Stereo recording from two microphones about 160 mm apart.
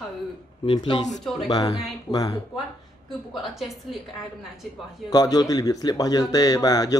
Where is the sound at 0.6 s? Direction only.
30° left (ahead or behind).